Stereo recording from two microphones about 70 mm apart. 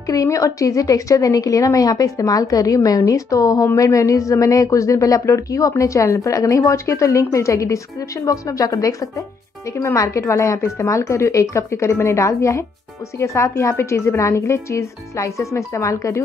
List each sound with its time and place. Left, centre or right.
0.0 s a woman's voice: left
9.9 s a woman's voice: left